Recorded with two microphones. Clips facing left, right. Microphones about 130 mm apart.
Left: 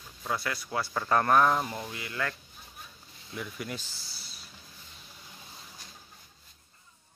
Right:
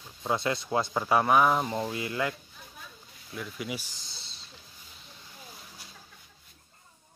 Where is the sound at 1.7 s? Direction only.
25° right (ahead or behind).